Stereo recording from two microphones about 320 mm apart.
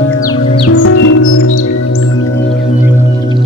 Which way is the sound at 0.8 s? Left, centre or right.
Left.